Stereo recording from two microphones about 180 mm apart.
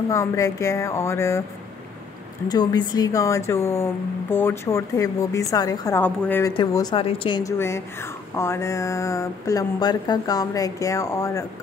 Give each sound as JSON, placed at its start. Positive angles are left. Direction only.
{"t": 0.1, "sound": "speech", "side_deg": 15}
{"t": 2.4, "sound": "speech", "side_deg": 20}
{"t": 6.5, "sound": "speech", "side_deg": 25}
{"t": 7.5, "sound": "speech", "side_deg": 15}